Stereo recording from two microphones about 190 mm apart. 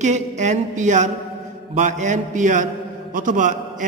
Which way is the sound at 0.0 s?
40° right (ahead or behind).